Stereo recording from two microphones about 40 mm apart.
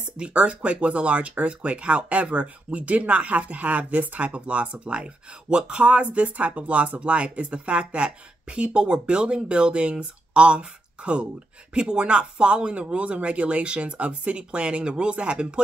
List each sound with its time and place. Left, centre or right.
0.2 s speech: right